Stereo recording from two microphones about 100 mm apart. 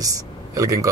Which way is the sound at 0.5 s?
35° right (ahead or behind).